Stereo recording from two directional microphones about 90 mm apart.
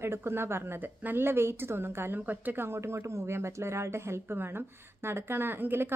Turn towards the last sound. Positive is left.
turn(degrees=-25)  # may be behind; listen again after turning